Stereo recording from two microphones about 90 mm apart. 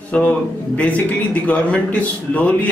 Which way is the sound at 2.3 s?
15° left (ahead or behind).